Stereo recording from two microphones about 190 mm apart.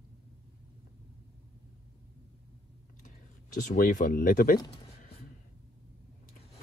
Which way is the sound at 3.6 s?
45° left (ahead or behind).